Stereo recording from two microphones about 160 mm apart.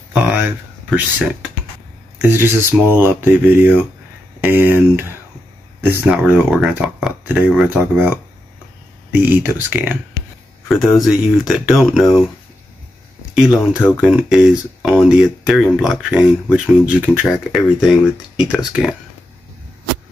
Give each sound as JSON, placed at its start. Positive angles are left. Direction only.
{"t": 0.1, "sound": "a sound", "side_deg": -10}
{"t": 0.8, "sound": "speech", "side_deg": -5}
{"t": 10.7, "sound": "speech", "side_deg": 0}
{"t": 13.3, "sound": "speech", "side_deg": -5}
{"t": 13.7, "sound": "speech", "side_deg": 15}
{"t": 14.0, "sound": "speech", "side_deg": -5}